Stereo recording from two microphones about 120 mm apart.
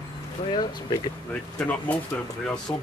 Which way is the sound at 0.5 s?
40° left (ahead or behind).